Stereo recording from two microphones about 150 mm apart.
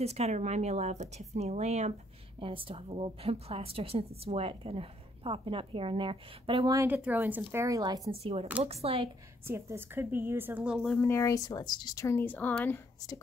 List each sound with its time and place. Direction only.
0.0 s a woman's voice: 45° right (ahead or behind)
6.9 s a woman's voice: 10° right (ahead or behind)
8.1 s a woman's voice: 40° right (ahead or behind)
9.5 s a woman's voice: 15° right (ahead or behind)
10.9 s speech: 15° left (ahead or behind)